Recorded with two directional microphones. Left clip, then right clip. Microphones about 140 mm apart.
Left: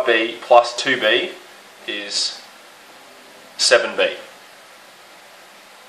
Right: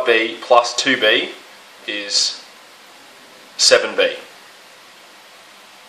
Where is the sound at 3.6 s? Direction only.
25° right (ahead or behind).